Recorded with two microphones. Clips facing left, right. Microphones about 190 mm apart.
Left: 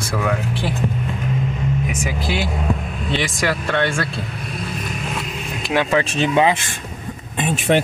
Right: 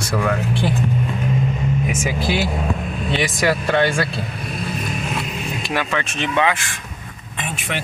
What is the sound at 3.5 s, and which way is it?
Speech, 10° right (ahead or behind).